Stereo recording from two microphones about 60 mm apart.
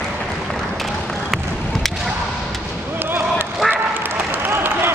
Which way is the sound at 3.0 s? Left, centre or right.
Right.